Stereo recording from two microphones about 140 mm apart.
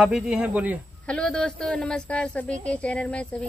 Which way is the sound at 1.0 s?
5° left (ahead or behind).